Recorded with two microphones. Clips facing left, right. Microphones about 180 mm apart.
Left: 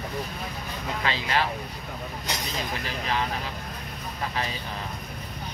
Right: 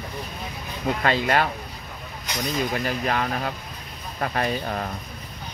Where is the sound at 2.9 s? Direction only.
55° right (ahead or behind).